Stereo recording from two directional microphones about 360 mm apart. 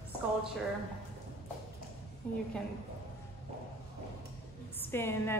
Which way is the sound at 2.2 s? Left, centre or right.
Centre.